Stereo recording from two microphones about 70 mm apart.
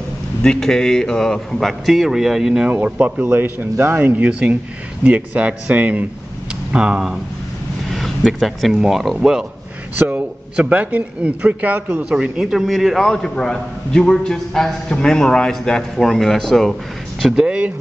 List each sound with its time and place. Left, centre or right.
0.4 s a man's voice: centre
2.7 s a man's voice: centre
3.3 s a man's voice: right
6.7 s speech: centre
8.2 s a man's voice: centre
9.9 s a man's voice: right
12.0 s a man's voice: centre
17.5 s a sound: centre